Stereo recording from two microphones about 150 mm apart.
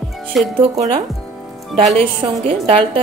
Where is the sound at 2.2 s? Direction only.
35° right (ahead or behind).